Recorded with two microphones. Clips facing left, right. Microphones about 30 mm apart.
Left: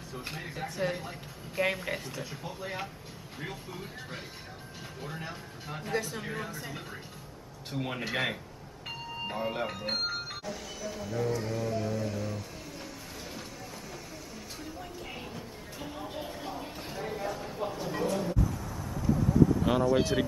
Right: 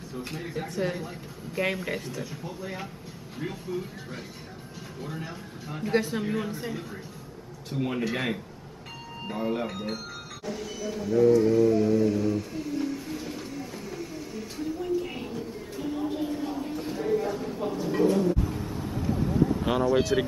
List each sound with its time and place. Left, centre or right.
0.2 s speech: centre
2.1 s speech: centre
3.3 s speech: centre
5.9 s speech: right
7.7 s speech: centre
10.4 s speech: centre
13.6 s a sound: centre
18.4 s vehicle: right
19.7 s speech: centre